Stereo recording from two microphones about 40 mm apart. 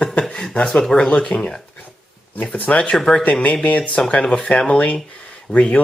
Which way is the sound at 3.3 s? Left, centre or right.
Left.